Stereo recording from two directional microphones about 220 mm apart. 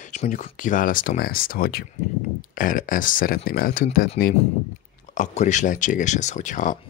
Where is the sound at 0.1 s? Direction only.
35° left (ahead or behind).